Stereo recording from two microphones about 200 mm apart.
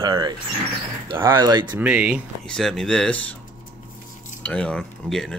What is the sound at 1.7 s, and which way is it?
Speech, 5° right (ahead or behind).